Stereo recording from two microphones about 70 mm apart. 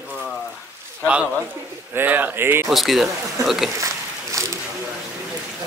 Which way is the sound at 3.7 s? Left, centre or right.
Right.